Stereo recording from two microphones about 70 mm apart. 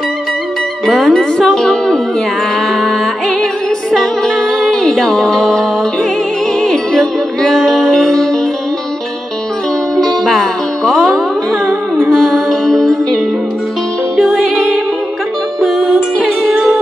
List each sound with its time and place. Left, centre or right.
0.8 s speech: centre
2.7 s music: centre
9.9 s music: centre